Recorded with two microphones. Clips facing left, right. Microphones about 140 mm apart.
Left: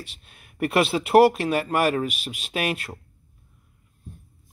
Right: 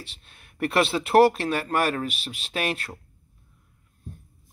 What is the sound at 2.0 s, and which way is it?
Speech, 35° right (ahead or behind).